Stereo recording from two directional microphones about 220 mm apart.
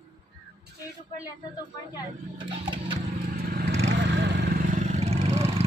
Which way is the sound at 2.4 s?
25° right (ahead or behind).